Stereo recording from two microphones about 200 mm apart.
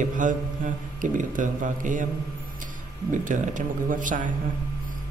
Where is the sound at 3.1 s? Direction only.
40° right (ahead or behind).